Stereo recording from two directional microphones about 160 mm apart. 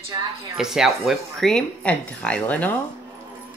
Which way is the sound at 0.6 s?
5° right (ahead or behind).